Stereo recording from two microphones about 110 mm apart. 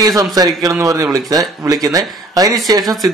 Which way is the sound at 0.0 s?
35° right (ahead or behind).